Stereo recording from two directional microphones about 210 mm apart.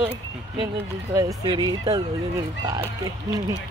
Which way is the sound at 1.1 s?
20° right (ahead or behind).